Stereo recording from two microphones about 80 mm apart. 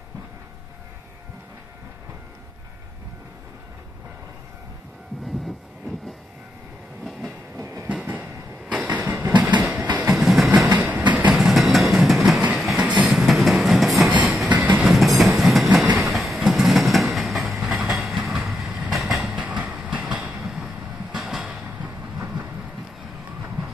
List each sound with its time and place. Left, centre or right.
7.5 s train: right
7.9 s train: centre
9.4 s a sound: centre
10.1 s train: centre
10.7 s train: right
11.3 s train: centre
12.8 s train: centre
13.1 s train: centre
14.5 s train: centre
14.8 s train: centre
19.3 s train: centre
20.6 s train: centre
21.5 s vehicle: centre